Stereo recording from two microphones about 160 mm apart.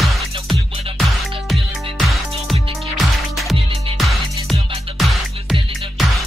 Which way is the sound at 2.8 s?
Centre (ahead or behind).